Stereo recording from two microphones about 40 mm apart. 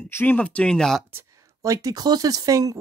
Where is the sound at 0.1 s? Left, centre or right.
Left.